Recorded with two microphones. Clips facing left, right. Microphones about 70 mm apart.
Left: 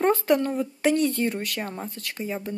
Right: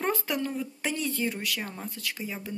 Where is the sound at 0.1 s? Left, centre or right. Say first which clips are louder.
Left 9 dB; left.